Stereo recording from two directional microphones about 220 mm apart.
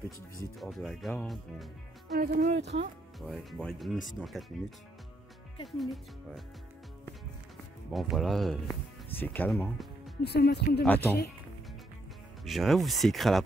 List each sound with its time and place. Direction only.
0.6 s speech: centre (ahead or behind)
2.1 s speech: 50° right (ahead or behind)
3.2 s speech: centre (ahead or behind)
7.9 s speech: centre (ahead or behind)
10.2 s speech: 50° left (ahead or behind)
10.8 s speech: 10° left (ahead or behind)
12.4 s speech: centre (ahead or behind)